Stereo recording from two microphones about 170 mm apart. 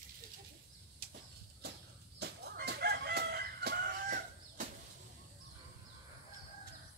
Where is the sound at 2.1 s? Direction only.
75° right (ahead or behind); by 4.6 s 55° right (ahead or behind).